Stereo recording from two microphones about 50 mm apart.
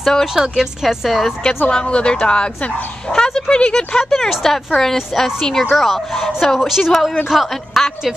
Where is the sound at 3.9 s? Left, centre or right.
Centre.